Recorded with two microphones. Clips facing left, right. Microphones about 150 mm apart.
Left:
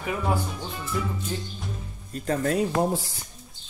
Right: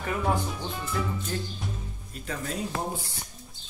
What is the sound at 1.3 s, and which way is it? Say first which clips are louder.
Speech: right 1 dB; 20° left (ahead or behind).